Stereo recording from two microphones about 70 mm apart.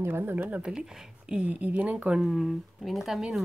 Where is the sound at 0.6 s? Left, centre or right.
Centre.